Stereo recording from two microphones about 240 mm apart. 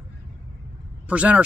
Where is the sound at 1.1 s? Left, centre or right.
Centre.